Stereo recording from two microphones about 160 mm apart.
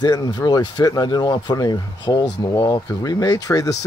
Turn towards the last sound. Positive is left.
turn(degrees=20)  # may be behind; listen again after turning